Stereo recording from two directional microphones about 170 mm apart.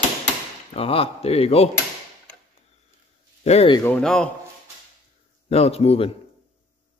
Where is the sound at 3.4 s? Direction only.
35° left (ahead or behind).